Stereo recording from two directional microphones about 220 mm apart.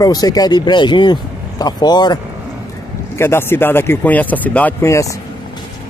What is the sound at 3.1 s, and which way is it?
Speech, 10° left (ahead or behind).